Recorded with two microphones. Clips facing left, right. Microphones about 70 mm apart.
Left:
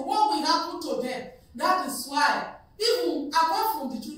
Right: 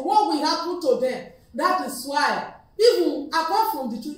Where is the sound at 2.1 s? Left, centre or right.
Right.